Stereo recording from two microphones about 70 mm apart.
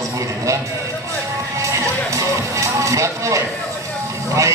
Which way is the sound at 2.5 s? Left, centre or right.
Right.